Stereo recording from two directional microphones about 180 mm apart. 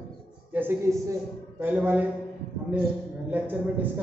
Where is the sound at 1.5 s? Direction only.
10° right (ahead or behind).